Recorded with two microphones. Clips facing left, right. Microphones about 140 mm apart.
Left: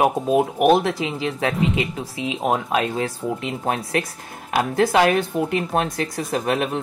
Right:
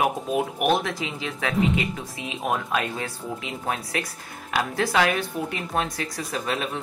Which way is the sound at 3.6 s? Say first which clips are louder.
Left 5 dB; 40° left (ahead or behind).